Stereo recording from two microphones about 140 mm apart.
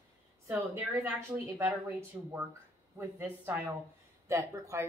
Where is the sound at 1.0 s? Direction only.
20° right (ahead or behind).